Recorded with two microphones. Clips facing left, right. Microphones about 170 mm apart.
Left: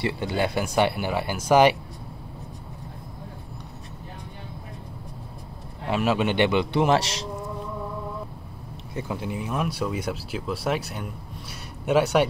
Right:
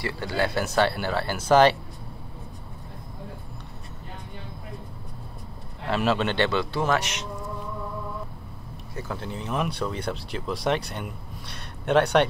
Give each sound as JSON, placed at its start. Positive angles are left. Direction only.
{"t": 0.0, "sound": "speech", "side_deg": 20}
{"t": 5.9, "sound": "speech", "side_deg": 10}
{"t": 7.0, "sound": "speech", "side_deg": 30}
{"t": 8.9, "sound": "speech", "side_deg": 15}